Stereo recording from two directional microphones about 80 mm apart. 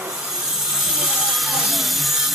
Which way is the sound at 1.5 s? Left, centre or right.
Centre.